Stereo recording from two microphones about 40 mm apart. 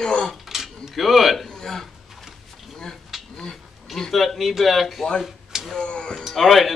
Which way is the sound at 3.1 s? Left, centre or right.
Centre.